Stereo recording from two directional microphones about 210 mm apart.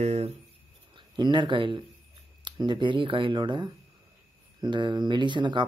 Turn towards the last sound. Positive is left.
turn(degrees=-20)  # may be behind; listen again after turning